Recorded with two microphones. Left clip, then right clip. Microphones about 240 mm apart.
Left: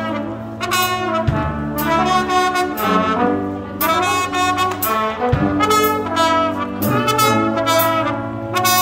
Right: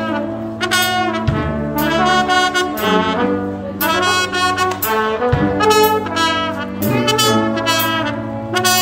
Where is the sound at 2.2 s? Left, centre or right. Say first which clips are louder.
Right 2 dB; left.